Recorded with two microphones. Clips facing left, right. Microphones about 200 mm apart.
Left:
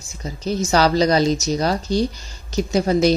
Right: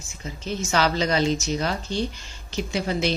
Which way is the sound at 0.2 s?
40° left (ahead or behind).